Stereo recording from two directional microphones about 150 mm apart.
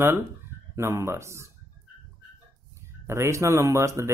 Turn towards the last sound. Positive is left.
turn(degrees=-20)  # may be behind; listen again after turning